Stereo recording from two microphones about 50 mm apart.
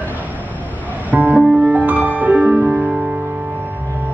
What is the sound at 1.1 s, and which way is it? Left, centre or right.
Music, right.